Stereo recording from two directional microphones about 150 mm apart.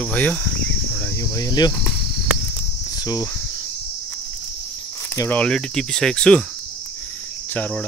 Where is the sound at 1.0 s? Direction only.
20° left (ahead or behind).